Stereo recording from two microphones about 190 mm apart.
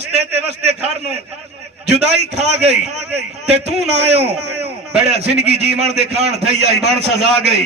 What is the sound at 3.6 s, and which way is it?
Speech, 35° right (ahead or behind).